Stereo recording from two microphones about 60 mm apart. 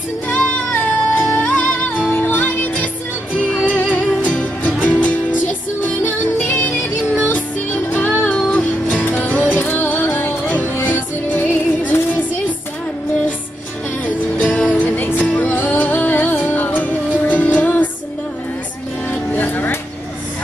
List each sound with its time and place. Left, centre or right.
0.7 s music: left
14.5 s music: left
19.3 s music: left